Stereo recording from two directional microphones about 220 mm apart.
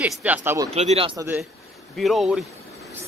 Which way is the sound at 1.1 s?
10° right (ahead or behind).